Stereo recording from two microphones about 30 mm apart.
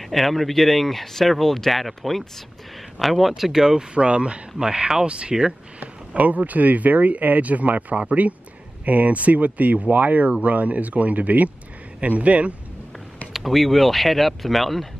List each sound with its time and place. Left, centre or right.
0.0 s speech: centre
3.9 s speech: right
4.6 s speech: right
5.3 s speech: centre
5.8 s speech: right
13.4 s speech: centre